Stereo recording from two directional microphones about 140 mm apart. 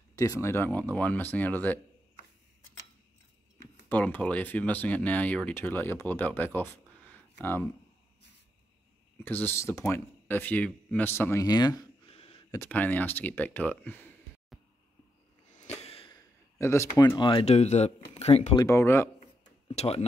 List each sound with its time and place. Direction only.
0.1 s speech: 20° left (ahead or behind)
3.9 s speech: 10° left (ahead or behind)
9.2 s speech: 15° left (ahead or behind)
12.1 s a sound: 45° left (ahead or behind)
12.6 s speech: 10° left (ahead or behind)
15.5 s a sound: 55° left (ahead or behind)
16.5 s a man's voice: 20° left (ahead or behind); by 17.5 s 35° left (ahead or behind)
17.5 s speech: 50° left (ahead or behind)
18.6 s speech: 20° left (ahead or behind)
19.7 s speech: 50° left (ahead or behind)